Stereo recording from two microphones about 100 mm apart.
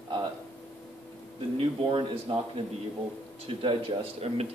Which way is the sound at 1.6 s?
60° right (ahead or behind).